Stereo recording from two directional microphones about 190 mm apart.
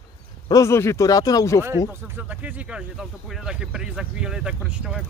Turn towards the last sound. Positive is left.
turn(degrees=-5)  # may be behind; listen again after turning